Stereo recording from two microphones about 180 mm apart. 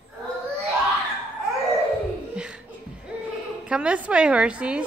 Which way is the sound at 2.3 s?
5° right (ahead or behind).